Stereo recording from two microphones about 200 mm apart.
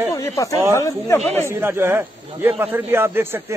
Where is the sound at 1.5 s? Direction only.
10° right (ahead or behind).